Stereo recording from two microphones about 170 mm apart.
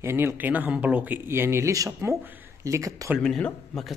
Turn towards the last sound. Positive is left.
turn(degrees=0)  # may be behind; listen again after turning